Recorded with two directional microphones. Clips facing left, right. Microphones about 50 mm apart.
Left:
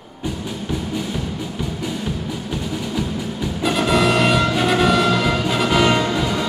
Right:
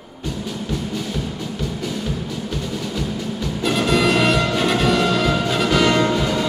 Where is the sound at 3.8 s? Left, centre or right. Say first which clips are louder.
Left 1 dB; centre.